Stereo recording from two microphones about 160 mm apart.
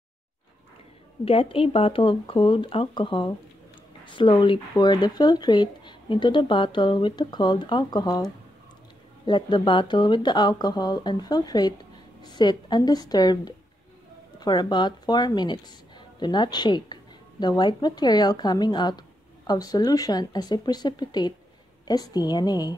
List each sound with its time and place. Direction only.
1.2 s speech: 35° left (ahead or behind)